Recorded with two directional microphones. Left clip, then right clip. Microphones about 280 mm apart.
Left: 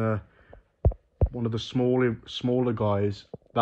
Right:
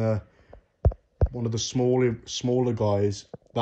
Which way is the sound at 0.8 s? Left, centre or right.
Left.